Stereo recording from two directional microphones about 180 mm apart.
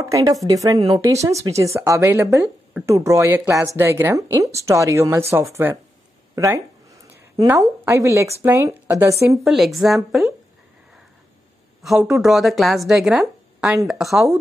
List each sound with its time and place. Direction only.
0.0 s speech: 20° right (ahead or behind)
9.4 s speech: centre (ahead or behind)
11.8 s speech: centre (ahead or behind)